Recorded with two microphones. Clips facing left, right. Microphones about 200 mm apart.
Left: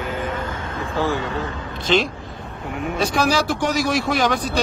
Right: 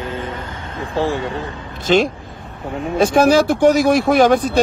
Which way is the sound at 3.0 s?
50° right (ahead or behind).